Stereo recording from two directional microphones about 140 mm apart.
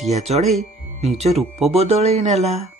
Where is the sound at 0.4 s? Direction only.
Centre (ahead or behind).